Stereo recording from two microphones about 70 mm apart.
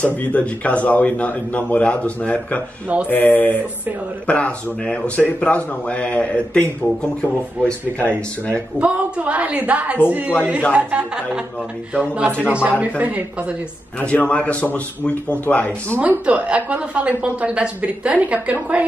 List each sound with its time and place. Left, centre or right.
0.0 s a man's voice: left
8.7 s a woman's voice: centre
12.4 s a woman's voice: centre
13.9 s a man's voice: left
16.0 s a woman's voice: right